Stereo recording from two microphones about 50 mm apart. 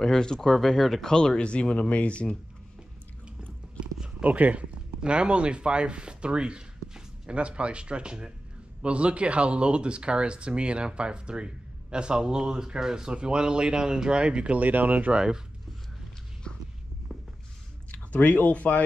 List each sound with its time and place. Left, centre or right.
0.0 s speech: centre
1.1 s speech: centre
4.2 s speech: right
14.6 s speech: right
15.1 s speech: centre
16.5 s walk: centre
17.1 s a sound: centre
17.9 s speech: left